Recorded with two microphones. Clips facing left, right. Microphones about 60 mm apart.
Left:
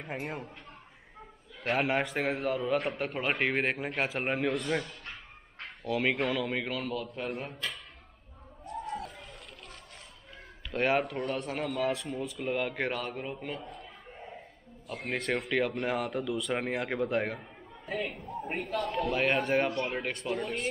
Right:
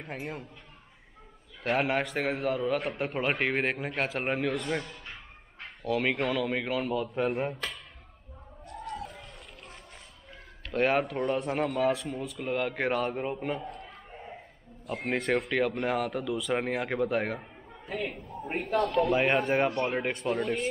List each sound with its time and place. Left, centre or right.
0.0 s a man's voice: centre
1.6 s a man's voice: centre
8.9 s music: centre
10.7 s a man's voice: centre
14.9 s a man's voice: centre